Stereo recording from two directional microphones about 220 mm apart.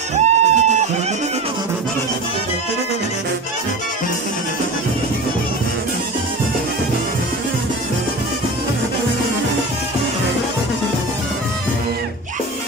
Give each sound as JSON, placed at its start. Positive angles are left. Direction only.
{"t": 0.1, "sound": "music", "side_deg": -30}